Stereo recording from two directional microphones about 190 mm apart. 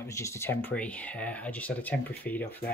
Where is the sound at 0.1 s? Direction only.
15° left (ahead or behind).